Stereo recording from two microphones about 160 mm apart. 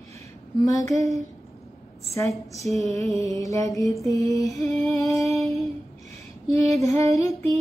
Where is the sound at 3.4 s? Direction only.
20° left (ahead or behind).